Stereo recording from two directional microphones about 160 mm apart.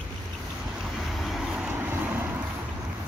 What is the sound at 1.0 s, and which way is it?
Vehicle, centre (ahead or behind).